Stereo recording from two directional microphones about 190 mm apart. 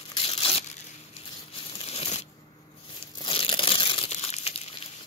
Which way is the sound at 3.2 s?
30° left (ahead or behind).